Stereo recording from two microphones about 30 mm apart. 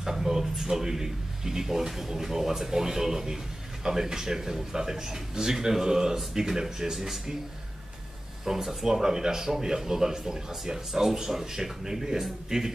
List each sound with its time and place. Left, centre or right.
0.0 s speech: centre
8.5 s speech: centre